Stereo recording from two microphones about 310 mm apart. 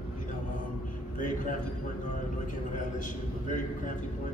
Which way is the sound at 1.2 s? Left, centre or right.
Left.